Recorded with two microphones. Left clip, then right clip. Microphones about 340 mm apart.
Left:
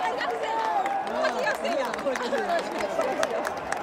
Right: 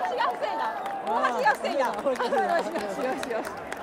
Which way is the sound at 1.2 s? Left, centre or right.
Centre.